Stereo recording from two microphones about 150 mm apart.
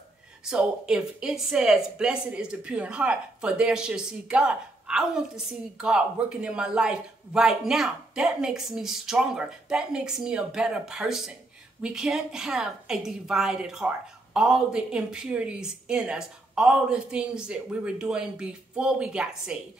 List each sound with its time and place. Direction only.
0.5 s a woman's voice: 5° right (ahead or behind)